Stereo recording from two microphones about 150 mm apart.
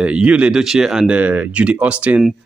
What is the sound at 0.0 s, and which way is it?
Speech, 10° right (ahead or behind).